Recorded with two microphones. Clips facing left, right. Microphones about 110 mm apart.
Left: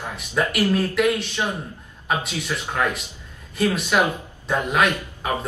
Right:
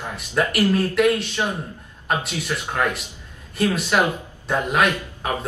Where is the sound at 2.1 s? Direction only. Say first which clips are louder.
Right 1 dB; centre (ahead or behind).